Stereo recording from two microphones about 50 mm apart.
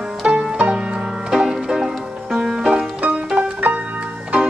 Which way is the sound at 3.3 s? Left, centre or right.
Right.